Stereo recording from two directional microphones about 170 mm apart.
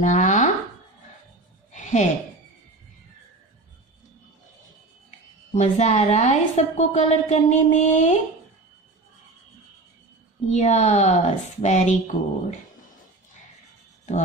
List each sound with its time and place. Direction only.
0.0 s chopping: 45° left (ahead or behind)
1.7 s a sound: 45° left (ahead or behind)
5.5 s a woman's voice: 45° left (ahead or behind)
10.5 s a woman's voice: 40° left (ahead or behind)